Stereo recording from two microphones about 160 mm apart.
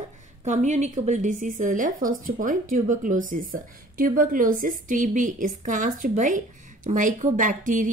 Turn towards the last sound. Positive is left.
turn(degrees=-55)  # may be behind; listen again after turning